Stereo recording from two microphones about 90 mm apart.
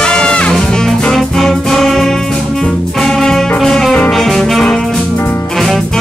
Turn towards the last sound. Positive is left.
turn(degrees=5)  # may be behind; listen again after turning